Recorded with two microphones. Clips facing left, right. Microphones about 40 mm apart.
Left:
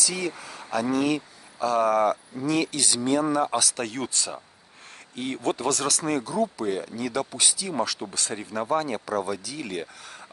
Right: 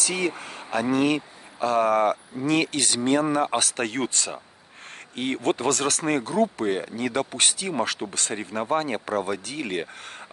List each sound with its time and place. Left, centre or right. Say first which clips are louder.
0.0 s speech: right 3 dB; right